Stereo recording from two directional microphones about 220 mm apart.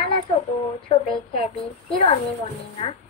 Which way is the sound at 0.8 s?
25° left (ahead or behind).